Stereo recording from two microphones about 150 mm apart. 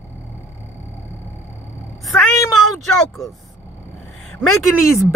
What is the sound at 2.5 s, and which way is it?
Speech, centre (ahead or behind).